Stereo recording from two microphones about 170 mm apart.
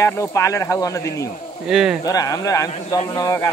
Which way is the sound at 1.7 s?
5° right (ahead or behind).